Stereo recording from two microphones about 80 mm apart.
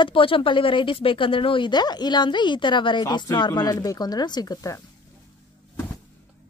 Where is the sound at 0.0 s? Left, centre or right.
Left.